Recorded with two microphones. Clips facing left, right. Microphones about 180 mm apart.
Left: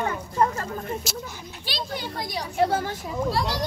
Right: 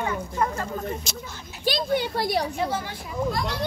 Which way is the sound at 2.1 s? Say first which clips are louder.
Right 7 dB; 65° right (ahead or behind).